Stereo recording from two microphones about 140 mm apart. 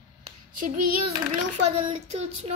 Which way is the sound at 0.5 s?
70° right (ahead or behind).